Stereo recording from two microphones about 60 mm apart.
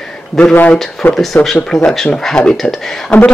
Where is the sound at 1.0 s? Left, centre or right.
Centre.